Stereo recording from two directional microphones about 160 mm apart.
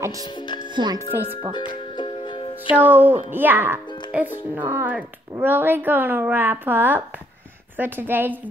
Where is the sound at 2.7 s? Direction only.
10° right (ahead or behind).